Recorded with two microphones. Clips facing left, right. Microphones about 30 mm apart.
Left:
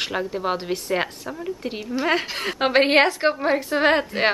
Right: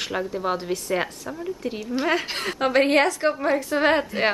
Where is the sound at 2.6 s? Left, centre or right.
Left.